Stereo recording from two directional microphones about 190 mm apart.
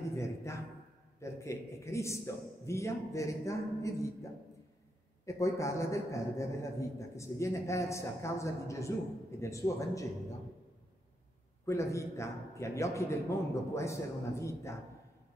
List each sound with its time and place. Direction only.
0.1 s a sound: 15° left (ahead or behind)
1.2 s a man's voice: 15° left (ahead or behind)
11.6 s a man's voice: 15° left (ahead or behind)